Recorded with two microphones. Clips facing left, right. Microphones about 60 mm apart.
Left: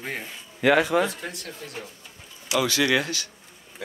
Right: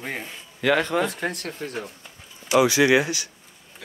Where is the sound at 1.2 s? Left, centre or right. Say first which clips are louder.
Right 7 dB; right.